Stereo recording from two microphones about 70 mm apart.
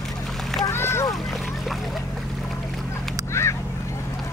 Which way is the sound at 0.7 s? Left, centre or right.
Left.